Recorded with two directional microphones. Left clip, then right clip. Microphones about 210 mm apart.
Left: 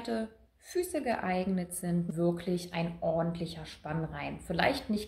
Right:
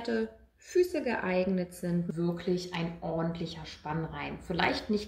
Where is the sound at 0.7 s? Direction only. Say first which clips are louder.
Right 4 dB; 40° left (ahead or behind).